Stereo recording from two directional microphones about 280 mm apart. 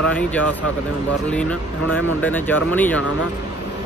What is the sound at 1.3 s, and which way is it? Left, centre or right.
Speech, centre.